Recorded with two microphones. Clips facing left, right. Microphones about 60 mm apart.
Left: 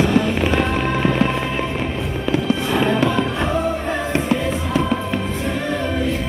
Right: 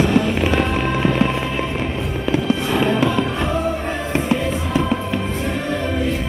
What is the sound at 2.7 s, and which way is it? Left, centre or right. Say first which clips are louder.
Music: even; left.